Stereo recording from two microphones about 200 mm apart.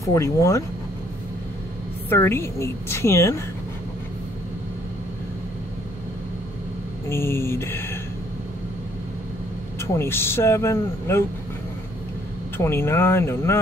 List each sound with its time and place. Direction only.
0.0 s speech: 15° left (ahead or behind)
2.0 s speech: 15° left (ahead or behind)
7.1 s a sound: 10° left (ahead or behind)
9.8 s speech: 10° left (ahead or behind)
12.5 s speech: 10° left (ahead or behind)